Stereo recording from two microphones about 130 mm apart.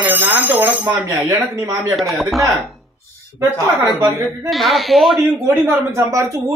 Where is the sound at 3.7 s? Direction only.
20° right (ahead or behind).